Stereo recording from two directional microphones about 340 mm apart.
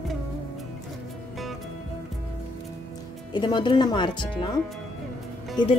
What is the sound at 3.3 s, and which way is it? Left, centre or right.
Speech, centre.